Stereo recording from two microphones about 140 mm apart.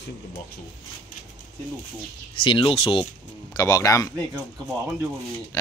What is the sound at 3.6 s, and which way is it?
Speech, 25° left (ahead or behind).